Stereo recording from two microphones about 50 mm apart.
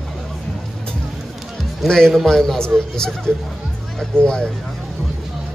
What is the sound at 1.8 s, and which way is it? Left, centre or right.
A man's voice, centre.